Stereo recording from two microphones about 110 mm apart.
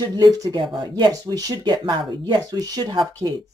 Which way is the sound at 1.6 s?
45° right (ahead or behind).